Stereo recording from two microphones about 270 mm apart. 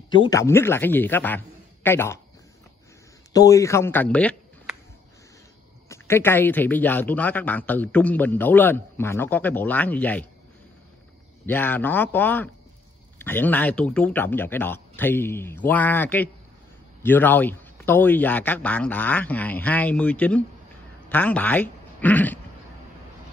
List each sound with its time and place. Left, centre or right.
0.1 s a man's voice: centre
3.3 s a man's voice: centre
5.9 s speech: centre
11.4 s speech: centre